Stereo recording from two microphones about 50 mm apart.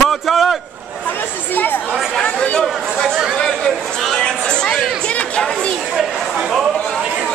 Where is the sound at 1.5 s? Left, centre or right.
Left.